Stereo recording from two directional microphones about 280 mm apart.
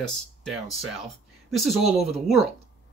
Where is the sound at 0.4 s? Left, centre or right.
Centre.